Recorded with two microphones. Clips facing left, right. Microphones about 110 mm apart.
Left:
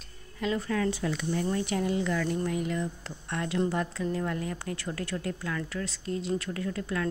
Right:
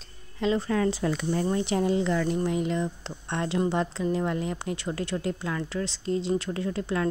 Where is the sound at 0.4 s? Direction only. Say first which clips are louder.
Right 4 dB; 30° right (ahead or behind).